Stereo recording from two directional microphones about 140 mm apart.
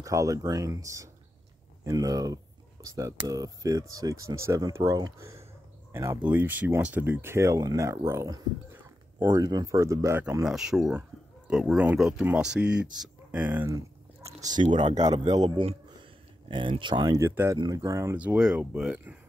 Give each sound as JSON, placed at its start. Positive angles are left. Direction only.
{"t": 0.0, "sound": "speech", "side_deg": -25}
{"t": 5.9, "sound": "a sound", "side_deg": -20}
{"t": 6.2, "sound": "speech", "side_deg": -10}
{"t": 10.4, "sound": "speech", "side_deg": -5}
{"t": 14.4, "sound": "speech", "side_deg": -30}
{"t": 17.1, "sound": "speech", "side_deg": -20}
{"t": 18.1, "sound": "speech", "side_deg": -10}